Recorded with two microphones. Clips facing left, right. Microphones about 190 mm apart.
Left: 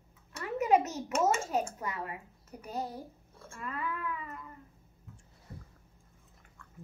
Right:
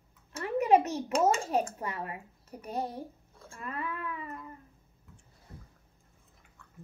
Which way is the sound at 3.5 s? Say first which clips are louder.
Even; 25° right (ahead or behind).